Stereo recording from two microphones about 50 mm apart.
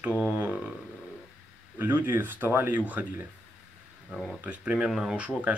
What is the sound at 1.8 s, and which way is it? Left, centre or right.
Speech, right.